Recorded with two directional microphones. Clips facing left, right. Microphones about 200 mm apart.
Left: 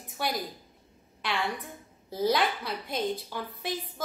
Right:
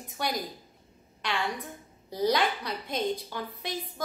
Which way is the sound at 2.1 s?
5° left (ahead or behind).